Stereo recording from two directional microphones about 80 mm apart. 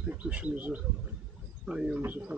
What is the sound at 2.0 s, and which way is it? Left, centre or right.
Speech, right.